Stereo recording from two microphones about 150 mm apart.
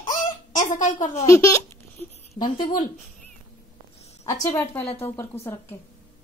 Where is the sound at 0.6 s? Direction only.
60° left (ahead or behind).